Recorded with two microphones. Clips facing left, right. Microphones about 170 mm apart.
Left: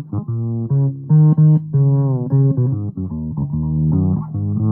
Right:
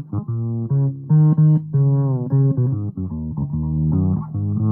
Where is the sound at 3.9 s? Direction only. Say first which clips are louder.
Left 2 dB; 30° left (ahead or behind).